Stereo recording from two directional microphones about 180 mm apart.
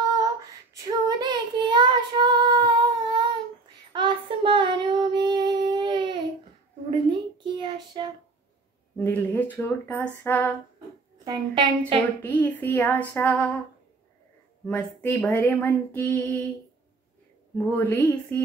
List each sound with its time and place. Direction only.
0.2 s child singing: 20° right (ahead or behind)
6.9 s a sound: 25° right (ahead or behind)
8.9 s speech: 10° left (ahead or behind)
11.2 s a woman's voice: 25° right (ahead or behind)
12.2 s speech: 10° left (ahead or behind)
14.7 s speech: 5° left (ahead or behind)
17.7 s speech: 10° left (ahead or behind)